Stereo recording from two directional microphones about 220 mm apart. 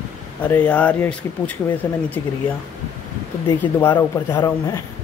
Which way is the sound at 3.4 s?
20° left (ahead or behind).